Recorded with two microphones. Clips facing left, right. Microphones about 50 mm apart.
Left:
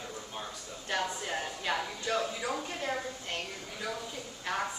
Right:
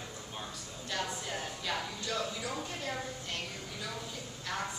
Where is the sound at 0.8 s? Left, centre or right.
Left.